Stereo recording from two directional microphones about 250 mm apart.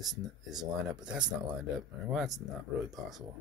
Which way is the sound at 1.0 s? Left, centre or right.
Centre.